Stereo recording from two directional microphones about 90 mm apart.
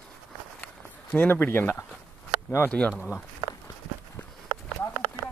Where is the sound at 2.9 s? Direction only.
5° right (ahead or behind).